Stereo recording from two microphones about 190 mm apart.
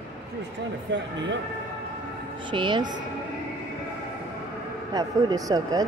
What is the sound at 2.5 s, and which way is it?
Speech, 25° right (ahead or behind).